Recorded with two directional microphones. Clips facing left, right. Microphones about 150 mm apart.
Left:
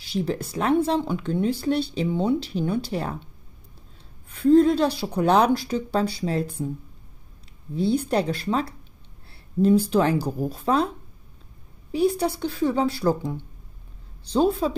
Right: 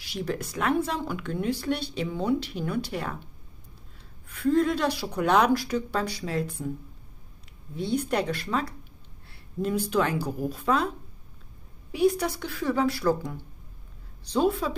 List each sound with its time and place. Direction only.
0.0 s speech: 30° left (ahead or behind)
4.3 s speech: 30° left (ahead or behind)
7.7 s speech: 30° left (ahead or behind)
12.2 s speech: 30° left (ahead or behind)